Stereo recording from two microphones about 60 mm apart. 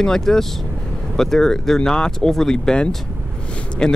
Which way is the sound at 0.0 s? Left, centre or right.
Centre.